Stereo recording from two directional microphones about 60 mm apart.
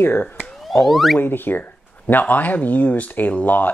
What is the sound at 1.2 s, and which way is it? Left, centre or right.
Speech, left.